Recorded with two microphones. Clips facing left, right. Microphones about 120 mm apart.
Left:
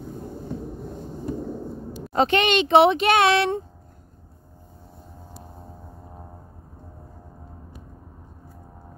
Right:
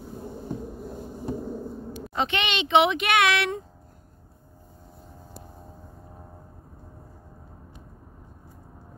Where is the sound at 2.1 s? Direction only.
40° left (ahead or behind).